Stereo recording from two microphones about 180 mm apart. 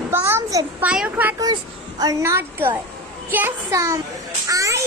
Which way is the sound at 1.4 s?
20° right (ahead or behind).